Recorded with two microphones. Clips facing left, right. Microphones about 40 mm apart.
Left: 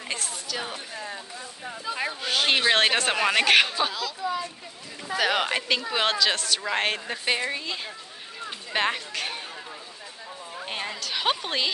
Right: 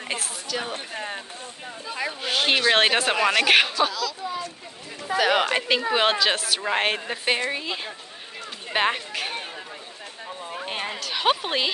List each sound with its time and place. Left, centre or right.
0.2 s speech: centre
0.7 s speech: right
2.2 s speech: centre
4.2 s speech: right
5.0 s speech: centre
10.6 s a sound: centre
11.0 s speech: centre